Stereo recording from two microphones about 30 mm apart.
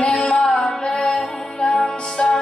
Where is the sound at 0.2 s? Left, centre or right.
Left.